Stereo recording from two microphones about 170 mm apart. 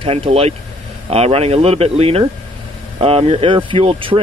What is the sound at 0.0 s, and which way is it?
Speech, 35° right (ahead or behind).